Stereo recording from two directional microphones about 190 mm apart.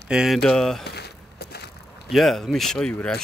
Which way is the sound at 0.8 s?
60° left (ahead or behind).